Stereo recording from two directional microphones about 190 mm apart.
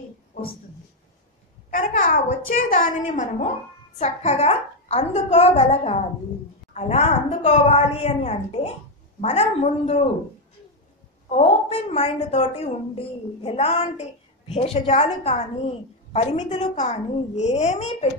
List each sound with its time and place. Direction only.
1.7 s a sound: 45° left (ahead or behind)
2.7 s a woman's voice: 40° left (ahead or behind)
11.3 s a woman's voice: 35° left (ahead or behind)